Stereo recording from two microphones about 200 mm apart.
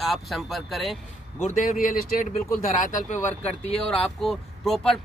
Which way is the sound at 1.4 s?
40° left (ahead or behind).